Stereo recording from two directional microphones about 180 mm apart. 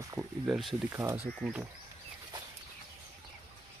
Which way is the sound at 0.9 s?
15° right (ahead or behind).